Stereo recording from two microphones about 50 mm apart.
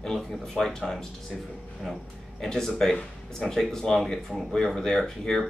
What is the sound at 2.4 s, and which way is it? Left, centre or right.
Speech, centre.